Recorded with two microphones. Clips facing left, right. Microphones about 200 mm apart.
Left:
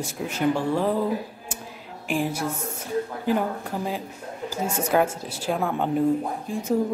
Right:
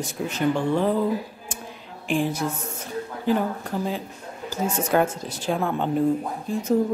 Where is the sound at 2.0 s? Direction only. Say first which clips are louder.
Right 2 dB; 10° left (ahead or behind).